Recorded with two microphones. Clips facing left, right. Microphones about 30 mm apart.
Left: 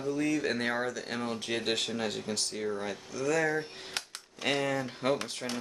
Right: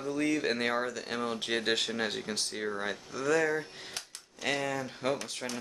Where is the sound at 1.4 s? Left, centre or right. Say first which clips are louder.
Right 2 dB; centre.